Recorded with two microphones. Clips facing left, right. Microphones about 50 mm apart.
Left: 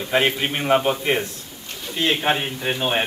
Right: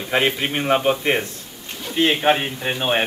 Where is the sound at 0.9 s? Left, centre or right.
Centre.